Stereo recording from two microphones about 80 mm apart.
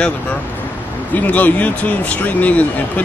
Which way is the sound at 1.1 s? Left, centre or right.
Centre.